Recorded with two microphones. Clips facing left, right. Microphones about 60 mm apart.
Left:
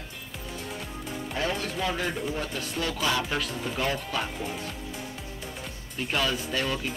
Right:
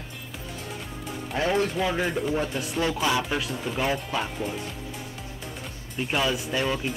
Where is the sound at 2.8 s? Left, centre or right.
Right.